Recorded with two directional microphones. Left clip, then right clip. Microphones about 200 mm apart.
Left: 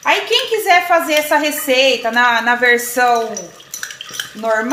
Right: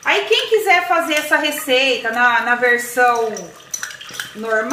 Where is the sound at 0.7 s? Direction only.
35° left (ahead or behind).